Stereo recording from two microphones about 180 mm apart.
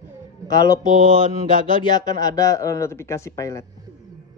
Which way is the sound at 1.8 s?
20° left (ahead or behind).